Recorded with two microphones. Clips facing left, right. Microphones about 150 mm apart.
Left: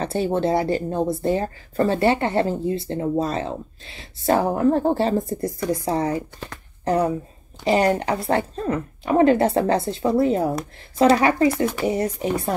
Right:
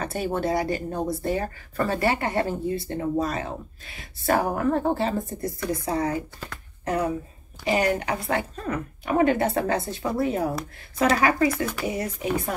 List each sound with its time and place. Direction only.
0.0 s speech: 25° left (ahead or behind)